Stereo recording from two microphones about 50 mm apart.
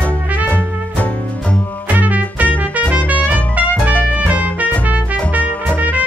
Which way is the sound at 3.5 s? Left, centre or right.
Right.